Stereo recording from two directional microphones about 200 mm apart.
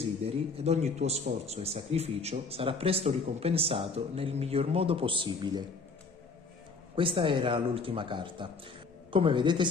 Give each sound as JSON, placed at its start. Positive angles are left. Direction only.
{"t": 0.0, "sound": "speech", "side_deg": -30}
{"t": 7.0, "sound": "speech", "side_deg": -25}